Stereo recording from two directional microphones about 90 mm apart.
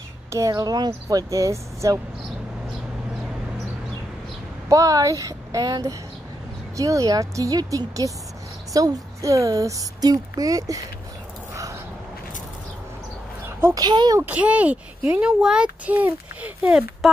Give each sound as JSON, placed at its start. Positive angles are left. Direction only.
{"t": 0.3, "sound": "speech", "side_deg": -40}
{"t": 4.6, "sound": "speech", "side_deg": -40}
{"t": 13.7, "sound": "speech", "side_deg": -50}
{"t": 14.2, "sound": "a child's voice", "side_deg": -15}
{"t": 17.0, "sound": "speech", "side_deg": 0}